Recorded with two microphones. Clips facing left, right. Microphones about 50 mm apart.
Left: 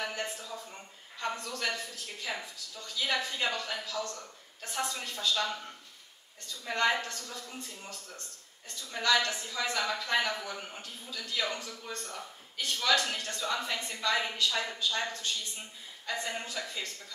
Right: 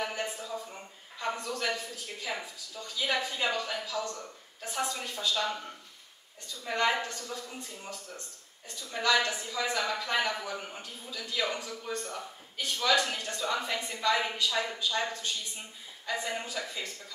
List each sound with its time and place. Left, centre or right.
0.0 s a sound: centre
1.3 s a woman's voice: centre
6.7 s a woman's voice: centre